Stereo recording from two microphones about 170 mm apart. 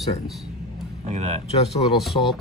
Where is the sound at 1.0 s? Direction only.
40° right (ahead or behind).